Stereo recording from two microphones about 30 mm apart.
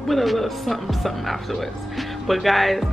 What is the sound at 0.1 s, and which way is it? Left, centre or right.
Speech, centre.